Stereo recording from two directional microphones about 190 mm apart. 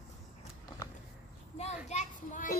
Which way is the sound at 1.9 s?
40° left (ahead or behind).